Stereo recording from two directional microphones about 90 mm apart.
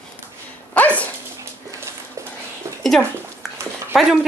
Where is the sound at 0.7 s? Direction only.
15° left (ahead or behind).